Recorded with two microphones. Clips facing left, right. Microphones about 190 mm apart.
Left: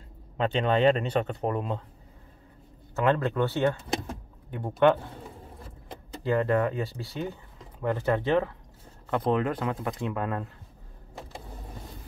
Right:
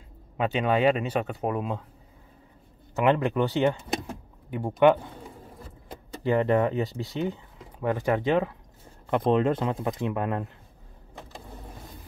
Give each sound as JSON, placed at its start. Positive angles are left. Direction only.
{"t": 0.4, "sound": "speech", "side_deg": -10}
{"t": 3.0, "sound": "speech", "side_deg": -15}
{"t": 6.2, "sound": "speech", "side_deg": -20}